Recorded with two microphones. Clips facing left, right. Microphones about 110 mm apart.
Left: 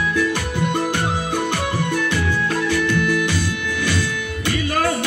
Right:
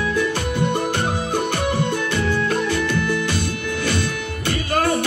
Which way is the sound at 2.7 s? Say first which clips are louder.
Left 2 dB; 25° right (ahead or behind).